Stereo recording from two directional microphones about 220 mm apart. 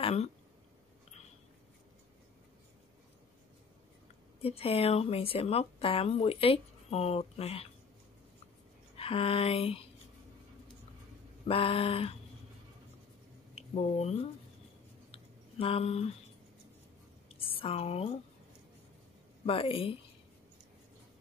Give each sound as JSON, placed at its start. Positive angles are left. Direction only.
{"t": 0.0, "sound": "speech", "side_deg": 30}
{"t": 4.4, "sound": "speech", "side_deg": 25}
{"t": 8.9, "sound": "speech", "side_deg": 25}
{"t": 11.4, "sound": "speech", "side_deg": 25}
{"t": 13.6, "sound": "speech", "side_deg": 30}
{"t": 15.6, "sound": "speech", "side_deg": 25}
{"t": 17.5, "sound": "a woman's voice", "side_deg": 25}
{"t": 19.4, "sound": "speech", "side_deg": 25}